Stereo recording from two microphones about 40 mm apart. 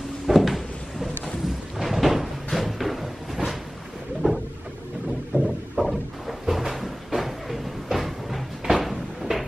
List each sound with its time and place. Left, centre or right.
0.3 s drawer open or close: centre
1.8 s cupboard open or close: centre
4.2 s cupboard open or close: right
5.3 s a sound: centre